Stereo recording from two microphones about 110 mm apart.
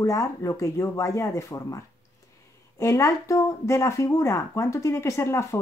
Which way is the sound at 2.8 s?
30° left (ahead or behind).